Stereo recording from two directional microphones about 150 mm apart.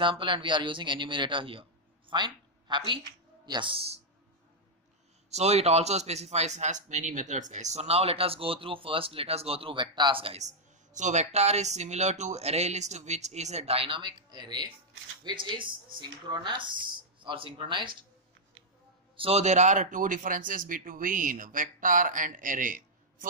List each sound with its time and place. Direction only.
0.0 s speech: 35° right (ahead or behind)
5.3 s a man's voice: 45° right (ahead or behind)
11.0 s a man's voice: 50° right (ahead or behind); by 17.9 s 35° right (ahead or behind)
19.1 s speech: 40° right (ahead or behind); by 23.2 s 60° right (ahead or behind)